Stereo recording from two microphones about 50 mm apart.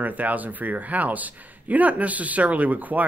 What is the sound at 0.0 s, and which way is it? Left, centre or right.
Speech, right.